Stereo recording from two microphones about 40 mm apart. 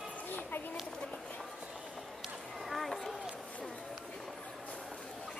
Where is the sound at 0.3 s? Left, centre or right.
Left.